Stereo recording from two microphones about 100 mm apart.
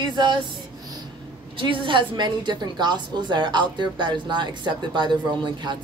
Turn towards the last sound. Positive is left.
turn(degrees=-50)  # may be behind; listen again after turning